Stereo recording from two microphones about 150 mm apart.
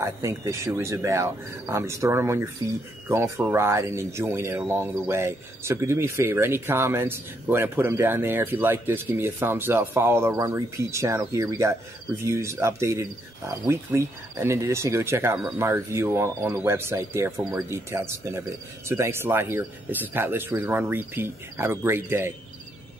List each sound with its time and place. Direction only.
0.0 s speech: 20° right (ahead or behind)